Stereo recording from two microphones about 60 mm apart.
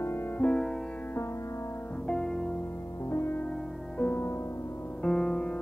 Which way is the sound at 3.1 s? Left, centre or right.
Left.